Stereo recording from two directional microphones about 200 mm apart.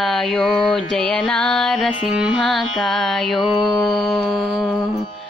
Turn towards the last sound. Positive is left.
turn(degrees=0)  # may be behind; listen again after turning